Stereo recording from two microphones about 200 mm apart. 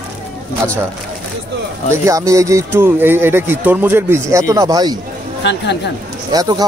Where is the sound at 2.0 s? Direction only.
15° right (ahead or behind).